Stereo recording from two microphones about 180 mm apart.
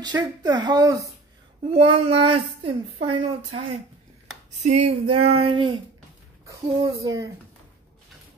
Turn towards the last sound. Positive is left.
turn(degrees=-20)  # may be behind; listen again after turning